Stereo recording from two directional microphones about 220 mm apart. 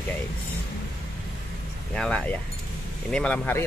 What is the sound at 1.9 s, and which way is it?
Speech, 5° left (ahead or behind).